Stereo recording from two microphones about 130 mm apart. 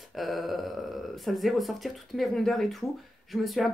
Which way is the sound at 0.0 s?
Centre (ahead or behind).